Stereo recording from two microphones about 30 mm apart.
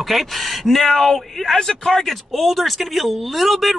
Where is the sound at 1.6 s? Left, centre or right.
Left.